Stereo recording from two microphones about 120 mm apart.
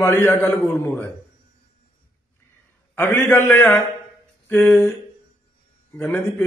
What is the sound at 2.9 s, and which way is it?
A man's voice, 20° left (ahead or behind).